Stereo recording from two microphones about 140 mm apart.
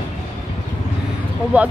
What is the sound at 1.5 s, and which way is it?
Speech, 10° right (ahead or behind).